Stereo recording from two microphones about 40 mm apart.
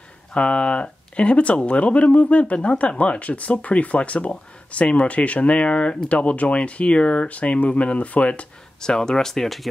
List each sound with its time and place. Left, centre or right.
0.3 s speech: left
8.8 s speech: centre